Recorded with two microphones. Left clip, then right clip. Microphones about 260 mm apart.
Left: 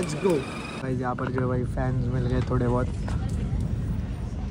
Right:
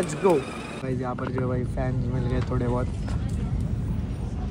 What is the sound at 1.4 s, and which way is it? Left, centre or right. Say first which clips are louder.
Speech: even; left.